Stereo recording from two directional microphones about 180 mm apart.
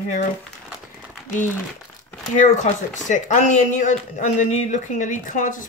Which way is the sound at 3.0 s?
45° left (ahead or behind).